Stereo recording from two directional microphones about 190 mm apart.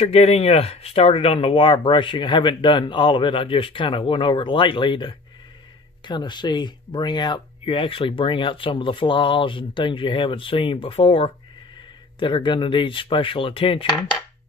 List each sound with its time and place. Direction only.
0.0 s speech: 30° left (ahead or behind)